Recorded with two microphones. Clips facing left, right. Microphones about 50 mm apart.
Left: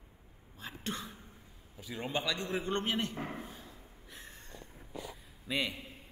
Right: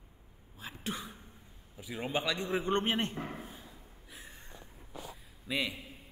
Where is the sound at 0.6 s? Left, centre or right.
Centre.